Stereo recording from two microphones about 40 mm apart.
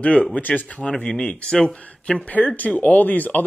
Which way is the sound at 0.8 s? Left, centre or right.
Left.